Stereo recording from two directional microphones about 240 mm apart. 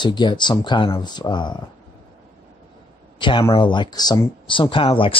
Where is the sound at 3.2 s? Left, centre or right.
Centre.